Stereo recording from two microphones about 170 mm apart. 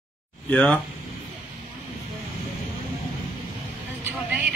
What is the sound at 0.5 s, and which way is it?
Speech, 5° left (ahead or behind).